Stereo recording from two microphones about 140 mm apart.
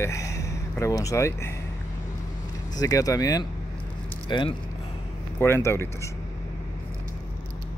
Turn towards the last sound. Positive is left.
turn(degrees=20)  # may be behind; listen again after turning